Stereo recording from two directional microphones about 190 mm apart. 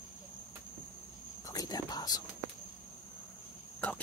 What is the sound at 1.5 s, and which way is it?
Cricket, 20° left (ahead or behind).